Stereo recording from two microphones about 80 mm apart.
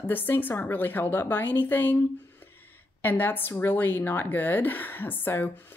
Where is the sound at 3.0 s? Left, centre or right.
Left.